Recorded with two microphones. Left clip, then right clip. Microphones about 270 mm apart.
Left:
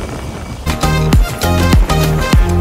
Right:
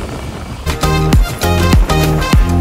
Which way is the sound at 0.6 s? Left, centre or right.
Centre.